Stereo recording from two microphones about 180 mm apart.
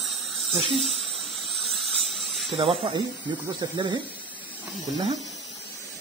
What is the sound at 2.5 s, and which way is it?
Speech, 25° right (ahead or behind).